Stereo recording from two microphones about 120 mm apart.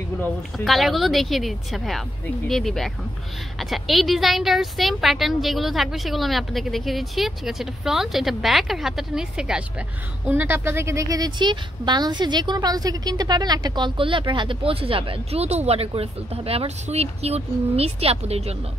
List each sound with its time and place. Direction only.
0.7 s a woman's voice: centre (ahead or behind); by 18.6 s 60° right (ahead or behind)